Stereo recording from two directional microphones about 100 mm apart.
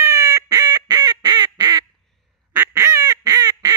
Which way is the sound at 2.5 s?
25° right (ahead or behind).